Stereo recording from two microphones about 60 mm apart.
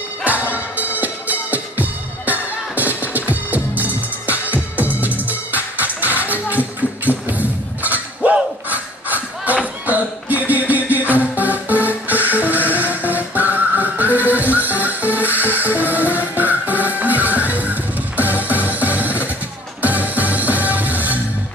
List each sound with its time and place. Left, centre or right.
0.2 s music: right
8.2 s battle cry: right
9.8 s music: right